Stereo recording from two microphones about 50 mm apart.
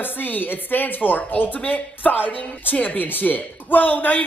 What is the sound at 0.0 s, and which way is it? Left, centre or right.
A woman's voice, left.